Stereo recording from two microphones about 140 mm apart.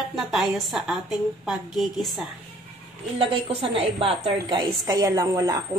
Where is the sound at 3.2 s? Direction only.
40° right (ahead or behind).